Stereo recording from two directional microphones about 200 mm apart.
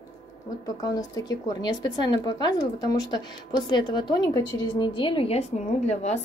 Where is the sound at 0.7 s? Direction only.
20° left (ahead or behind).